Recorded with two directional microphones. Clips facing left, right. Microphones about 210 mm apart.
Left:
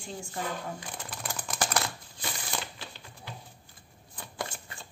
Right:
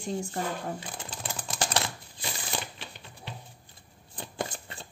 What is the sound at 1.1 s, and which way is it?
Typing, 25° right (ahead or behind).